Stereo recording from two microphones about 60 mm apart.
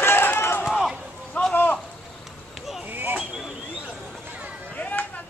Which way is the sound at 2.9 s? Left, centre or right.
Right.